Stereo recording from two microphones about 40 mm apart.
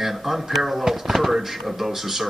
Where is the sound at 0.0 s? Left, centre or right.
Centre.